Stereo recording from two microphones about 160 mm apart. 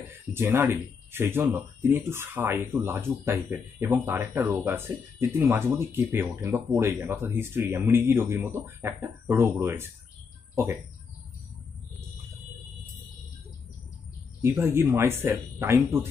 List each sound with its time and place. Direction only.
0.3 s speech: 15° right (ahead or behind)
14.4 s speech: 15° right (ahead or behind)